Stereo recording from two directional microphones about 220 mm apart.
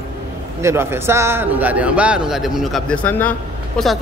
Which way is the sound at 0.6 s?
10° right (ahead or behind).